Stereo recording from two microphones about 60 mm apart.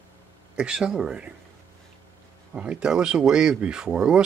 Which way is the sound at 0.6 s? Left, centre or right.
Centre.